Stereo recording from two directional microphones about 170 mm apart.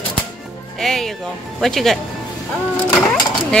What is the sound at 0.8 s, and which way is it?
Speech, centre (ahead or behind).